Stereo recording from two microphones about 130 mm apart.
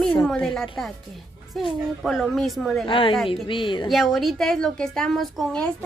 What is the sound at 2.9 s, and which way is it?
A woman's voice, 40° left (ahead or behind).